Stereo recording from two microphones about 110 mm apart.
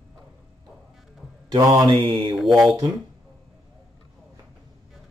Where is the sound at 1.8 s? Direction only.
50° right (ahead or behind).